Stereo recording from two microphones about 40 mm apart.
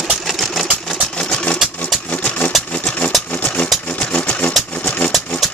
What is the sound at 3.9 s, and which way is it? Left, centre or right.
Sewing machine, left.